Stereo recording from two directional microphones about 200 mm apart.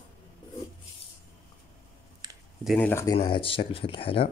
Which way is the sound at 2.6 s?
5° left (ahead or behind).